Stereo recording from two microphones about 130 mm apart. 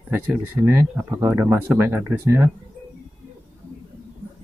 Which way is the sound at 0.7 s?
20° right (ahead or behind).